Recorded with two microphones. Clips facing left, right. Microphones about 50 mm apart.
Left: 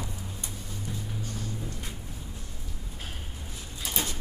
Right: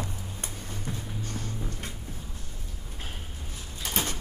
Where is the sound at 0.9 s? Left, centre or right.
Right.